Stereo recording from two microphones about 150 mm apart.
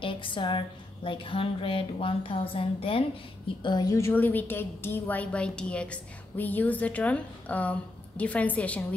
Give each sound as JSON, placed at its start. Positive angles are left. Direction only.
{"t": 0.0, "sound": "a woman's voice", "side_deg": 35}
{"t": 3.6, "sound": "a woman's voice", "side_deg": 25}